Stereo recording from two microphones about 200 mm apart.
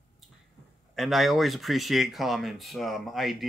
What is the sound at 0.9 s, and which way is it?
Speech, centre (ahead or behind).